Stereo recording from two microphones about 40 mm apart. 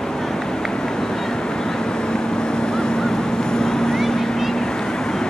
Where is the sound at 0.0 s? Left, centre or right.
Centre.